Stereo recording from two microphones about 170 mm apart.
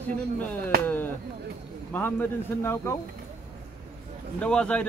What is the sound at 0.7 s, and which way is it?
Speech, 65° right (ahead or behind).